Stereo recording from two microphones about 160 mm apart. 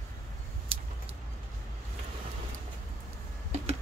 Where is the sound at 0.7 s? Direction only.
35° right (ahead or behind).